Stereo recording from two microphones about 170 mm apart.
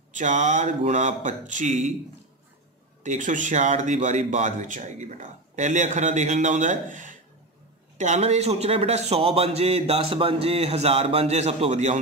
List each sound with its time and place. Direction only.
0.1 s speech: 45° right (ahead or behind)
3.0 s speech: 45° right (ahead or behind)